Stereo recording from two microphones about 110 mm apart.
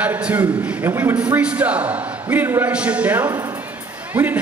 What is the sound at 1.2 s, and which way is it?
A man's voice, 10° right (ahead or behind).